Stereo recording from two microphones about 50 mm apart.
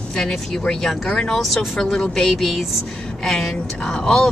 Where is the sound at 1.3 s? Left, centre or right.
Centre.